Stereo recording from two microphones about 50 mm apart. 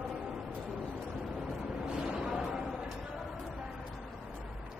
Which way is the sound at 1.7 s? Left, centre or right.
Centre.